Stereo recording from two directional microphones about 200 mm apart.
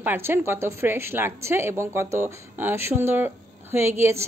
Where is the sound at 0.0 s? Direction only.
10° right (ahead or behind).